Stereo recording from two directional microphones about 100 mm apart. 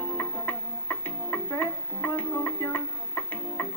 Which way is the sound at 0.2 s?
20° left (ahead or behind).